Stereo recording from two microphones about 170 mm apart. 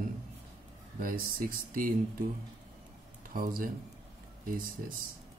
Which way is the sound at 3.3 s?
55° right (ahead or behind).